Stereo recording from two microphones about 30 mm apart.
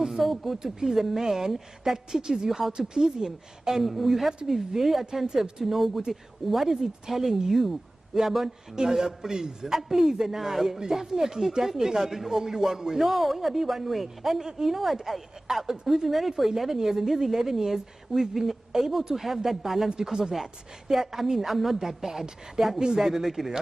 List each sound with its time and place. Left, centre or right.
0.2 s a man's voice: centre
3.8 s speech: centre
5.2 s a man's voice: right
5.6 s a man's voice: centre
8.7 s a man's voice: right
20.1 s a man's voice: right
20.9 s a man's voice: centre
21.7 s a man's voice: centre